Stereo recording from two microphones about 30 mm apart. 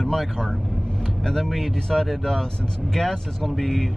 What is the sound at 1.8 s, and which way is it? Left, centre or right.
Speech, centre.